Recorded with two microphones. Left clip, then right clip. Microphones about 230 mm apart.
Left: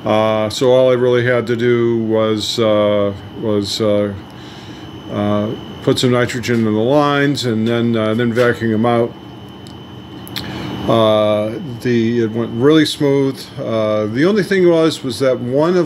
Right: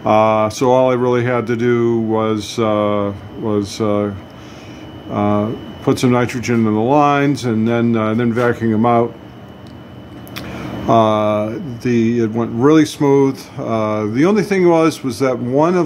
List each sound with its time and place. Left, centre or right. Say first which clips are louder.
0.0 s speech: right 2 dB; centre
5.1 s speech: right 1 dB; centre
10.9 s speech: left 1 dB; centre